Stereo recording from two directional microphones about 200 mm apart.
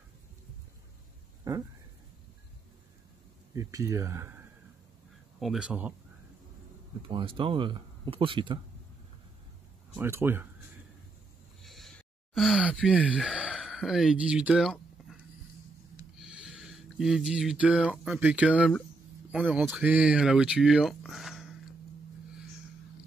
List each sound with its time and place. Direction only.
1.5 s a sound: 15° right (ahead or behind)
3.5 s speech: 15° right (ahead or behind)
5.4 s speech: 5° right (ahead or behind)
7.1 s speech: 25° right (ahead or behind)
9.9 s speech: 10° right (ahead or behind)
11.6 s groan: centre (ahead or behind)
16.2 s speech: centre (ahead or behind)